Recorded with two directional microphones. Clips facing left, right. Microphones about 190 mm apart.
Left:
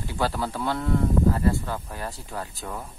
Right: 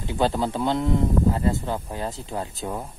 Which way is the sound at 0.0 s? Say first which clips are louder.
Right 4 dB; 20° right (ahead or behind).